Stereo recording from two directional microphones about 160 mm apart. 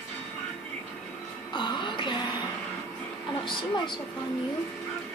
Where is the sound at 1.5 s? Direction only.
30° left (ahead or behind).